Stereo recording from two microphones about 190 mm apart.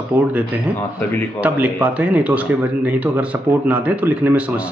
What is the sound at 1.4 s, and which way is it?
Speech, 5° right (ahead or behind).